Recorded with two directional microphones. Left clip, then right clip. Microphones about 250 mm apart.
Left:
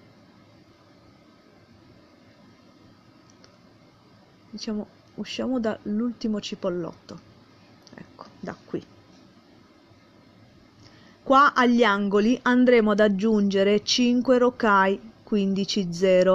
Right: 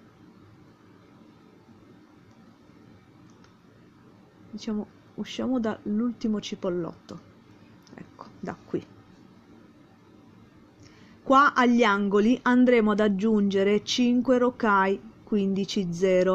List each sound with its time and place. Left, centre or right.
4.6 s speech: centre
7.9 s a sound: centre
11.2 s a woman's voice: centre